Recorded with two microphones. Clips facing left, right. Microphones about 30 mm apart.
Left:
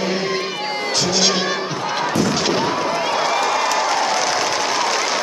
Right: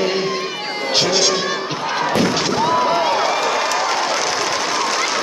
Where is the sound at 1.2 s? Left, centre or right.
Centre.